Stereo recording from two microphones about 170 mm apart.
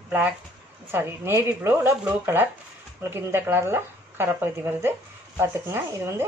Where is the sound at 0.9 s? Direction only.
15° right (ahead or behind).